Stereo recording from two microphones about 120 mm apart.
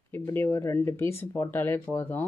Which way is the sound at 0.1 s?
20° left (ahead or behind).